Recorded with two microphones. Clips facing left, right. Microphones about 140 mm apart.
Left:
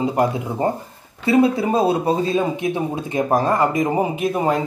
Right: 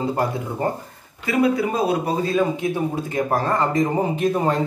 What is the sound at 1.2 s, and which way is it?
Speech, 30° left (ahead or behind).